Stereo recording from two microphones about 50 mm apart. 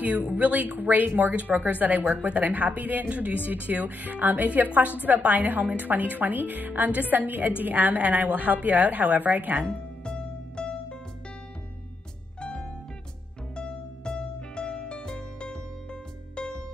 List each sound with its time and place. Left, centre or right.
0.0 s a woman's voice: right
9.7 s music: centre
12.4 s music: centre